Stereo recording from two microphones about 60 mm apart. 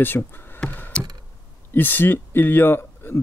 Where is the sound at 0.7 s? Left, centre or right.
Left.